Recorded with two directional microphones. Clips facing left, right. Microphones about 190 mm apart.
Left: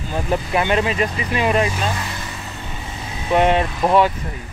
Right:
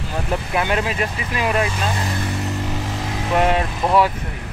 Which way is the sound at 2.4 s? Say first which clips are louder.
Right 8 dB; 90° right.